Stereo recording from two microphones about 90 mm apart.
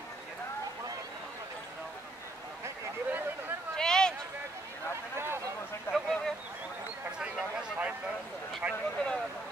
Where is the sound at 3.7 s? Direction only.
5° left (ahead or behind).